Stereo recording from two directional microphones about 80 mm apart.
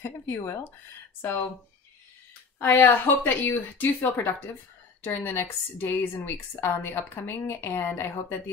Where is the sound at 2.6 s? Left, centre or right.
Left.